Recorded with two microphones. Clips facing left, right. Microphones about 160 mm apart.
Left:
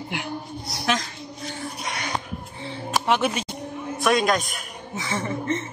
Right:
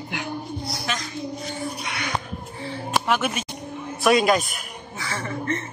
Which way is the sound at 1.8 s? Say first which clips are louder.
Even; 40° left (ahead or behind).